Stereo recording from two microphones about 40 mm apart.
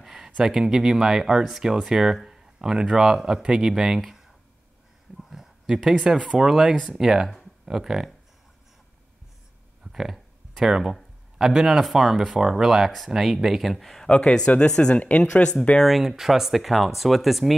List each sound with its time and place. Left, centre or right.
0.0 s a sound: centre
0.5 s speech: centre
4.0 s a sound: centre
5.3 s a sound: centre
6.0 s speech: centre
6.5 s speech: centre
9.9 s a man's voice: centre
14.0 s speech: left
15.0 s speech: left
16.0 s speech: centre